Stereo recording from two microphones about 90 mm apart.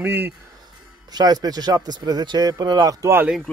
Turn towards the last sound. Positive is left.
turn(degrees=-45)  # may be behind; listen again after turning